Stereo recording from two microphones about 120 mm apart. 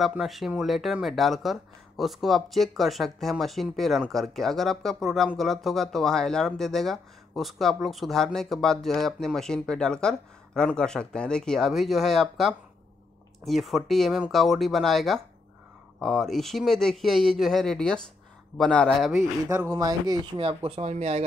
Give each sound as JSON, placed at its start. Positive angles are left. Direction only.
{"t": 0.1, "sound": "speech", "side_deg": 0}
{"t": 19.7, "sound": "speech", "side_deg": -35}
{"t": 20.3, "sound": "speech", "side_deg": -50}